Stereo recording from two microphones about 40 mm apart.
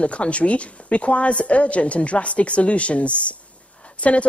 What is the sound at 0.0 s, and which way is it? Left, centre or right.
Speech, left.